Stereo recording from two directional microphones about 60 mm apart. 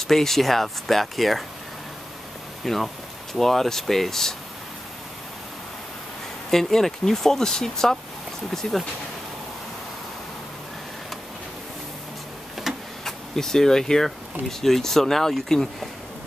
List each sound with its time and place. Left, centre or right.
0.0 s speech: centre
2.6 s speech: centre
6.5 s speech: centre
12.7 s vehicle: centre
13.0 s speech: centre